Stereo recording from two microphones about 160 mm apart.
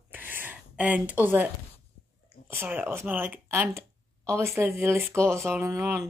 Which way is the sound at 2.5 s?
10° right (ahead or behind).